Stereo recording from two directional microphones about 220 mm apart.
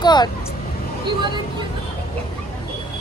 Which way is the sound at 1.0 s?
20° right (ahead or behind).